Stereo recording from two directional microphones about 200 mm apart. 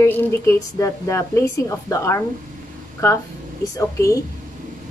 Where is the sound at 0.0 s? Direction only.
10° left (ahead or behind).